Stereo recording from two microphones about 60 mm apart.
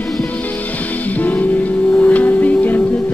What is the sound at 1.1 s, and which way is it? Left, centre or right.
Music, left.